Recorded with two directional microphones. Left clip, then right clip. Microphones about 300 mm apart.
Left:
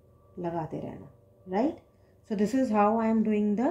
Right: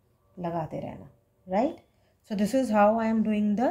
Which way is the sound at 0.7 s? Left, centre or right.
Right.